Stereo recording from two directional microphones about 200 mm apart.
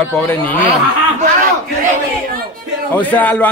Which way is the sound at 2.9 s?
10° left (ahead or behind).